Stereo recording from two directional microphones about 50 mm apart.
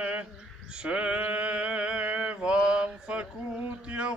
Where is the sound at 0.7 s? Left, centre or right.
Right.